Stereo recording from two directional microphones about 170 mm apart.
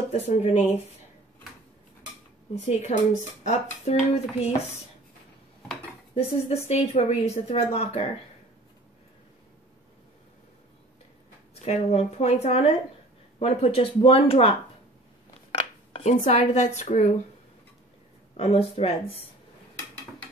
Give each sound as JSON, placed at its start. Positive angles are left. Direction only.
{"t": 0.1, "sound": "speech", "side_deg": 40}
{"t": 2.8, "sound": "speech", "side_deg": 45}
{"t": 6.1, "sound": "speech", "side_deg": 35}
{"t": 11.6, "sound": "speech", "side_deg": 40}
{"t": 15.9, "sound": "speech", "side_deg": 40}
{"t": 18.3, "sound": "speech", "side_deg": 35}